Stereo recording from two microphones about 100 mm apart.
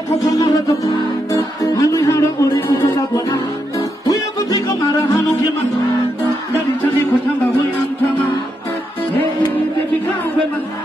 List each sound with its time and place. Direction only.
0.3 s music: 35° left (ahead or behind)